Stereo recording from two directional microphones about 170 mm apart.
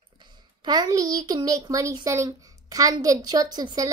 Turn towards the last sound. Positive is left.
turn(degrees=-25)  # may be behind; listen again after turning